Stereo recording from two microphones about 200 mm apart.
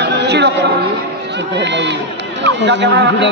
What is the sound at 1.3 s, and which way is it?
Speech, 60° right (ahead or behind).